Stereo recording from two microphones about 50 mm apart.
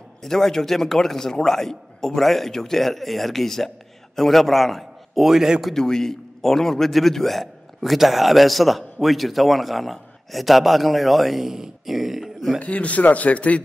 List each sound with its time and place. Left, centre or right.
0.2 s speech: centre
5.3 s a man's voice: centre
5.7 s a man's voice: centre
12.5 s speech: left